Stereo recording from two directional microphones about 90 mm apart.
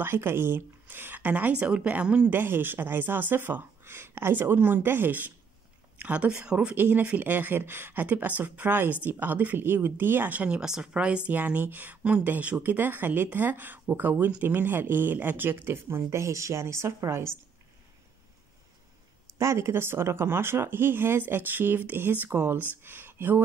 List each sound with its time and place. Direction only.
0.0 s a woman's voice: 25° right (ahead or behind)
19.3 s speech: 35° right (ahead or behind)